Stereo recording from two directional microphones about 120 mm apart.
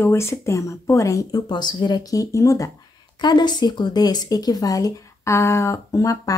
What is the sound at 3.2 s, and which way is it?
Speech, 35° left (ahead or behind).